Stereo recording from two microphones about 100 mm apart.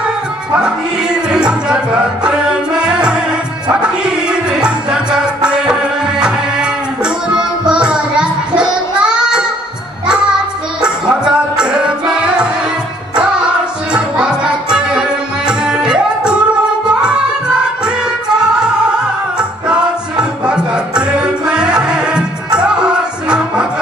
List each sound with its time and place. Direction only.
0.6 s a sound: 10° right (ahead or behind)
2.2 s music: 10° right (ahead or behind)
10.8 s music: 10° right (ahead or behind)